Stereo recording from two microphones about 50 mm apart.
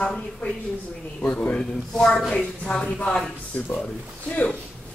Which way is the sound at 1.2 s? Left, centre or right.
Left.